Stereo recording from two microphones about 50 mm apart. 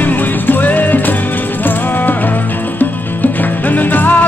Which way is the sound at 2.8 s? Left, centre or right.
Left.